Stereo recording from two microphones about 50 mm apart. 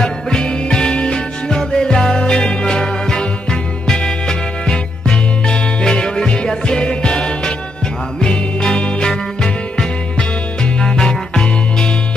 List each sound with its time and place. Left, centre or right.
0.0 s music: centre